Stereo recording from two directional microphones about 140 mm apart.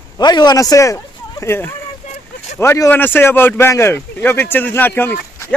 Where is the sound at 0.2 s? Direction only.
30° left (ahead or behind).